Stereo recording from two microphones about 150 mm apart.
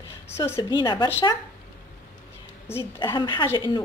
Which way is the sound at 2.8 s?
30° left (ahead or behind).